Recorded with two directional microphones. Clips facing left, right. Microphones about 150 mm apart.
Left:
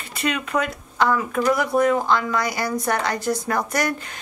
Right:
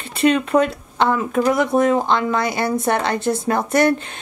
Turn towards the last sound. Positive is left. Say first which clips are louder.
# right 8 dB
turn(degrees=-25)  # may be behind; listen again after turning